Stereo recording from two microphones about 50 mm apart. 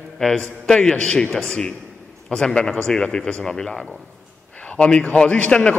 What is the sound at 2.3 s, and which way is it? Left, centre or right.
A man's voice, centre.